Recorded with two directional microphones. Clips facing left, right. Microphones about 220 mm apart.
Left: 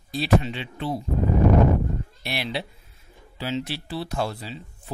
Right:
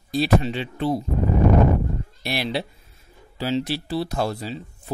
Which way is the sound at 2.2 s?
40° right (ahead or behind).